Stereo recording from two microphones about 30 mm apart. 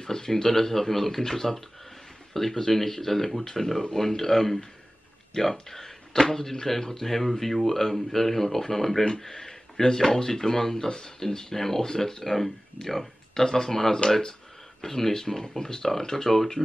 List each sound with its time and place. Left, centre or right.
0.0 s speech: centre
10.9 s speech: left